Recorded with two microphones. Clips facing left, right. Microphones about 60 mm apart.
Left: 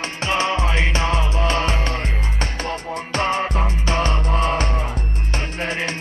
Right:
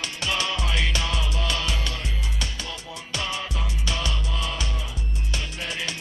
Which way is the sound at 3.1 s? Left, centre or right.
Left.